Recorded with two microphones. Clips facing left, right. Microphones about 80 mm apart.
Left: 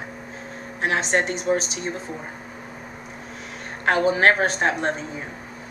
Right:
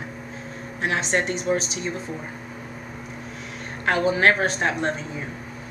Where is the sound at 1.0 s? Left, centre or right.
Left.